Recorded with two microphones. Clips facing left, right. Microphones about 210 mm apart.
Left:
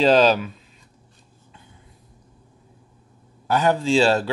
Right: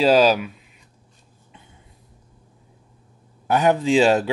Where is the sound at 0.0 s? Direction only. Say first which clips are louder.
Even; 10° right (ahead or behind).